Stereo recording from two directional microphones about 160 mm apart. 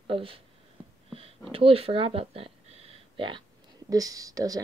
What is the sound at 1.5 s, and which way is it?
Speech, 35° right (ahead or behind).